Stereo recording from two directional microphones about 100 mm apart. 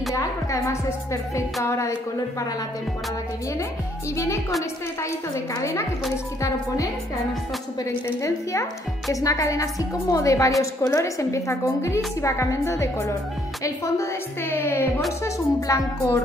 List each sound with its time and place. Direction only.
0.1 s speech: 30° left (ahead or behind)
5.3 s speech: 30° left (ahead or behind)
9.1 s a woman's voice: 35° left (ahead or behind)